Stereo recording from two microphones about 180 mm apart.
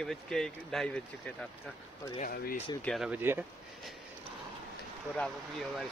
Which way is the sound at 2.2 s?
55° left (ahead or behind).